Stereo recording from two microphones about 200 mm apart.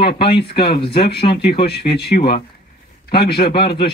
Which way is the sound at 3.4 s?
25° left (ahead or behind).